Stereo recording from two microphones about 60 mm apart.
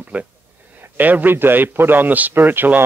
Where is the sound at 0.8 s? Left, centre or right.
Right.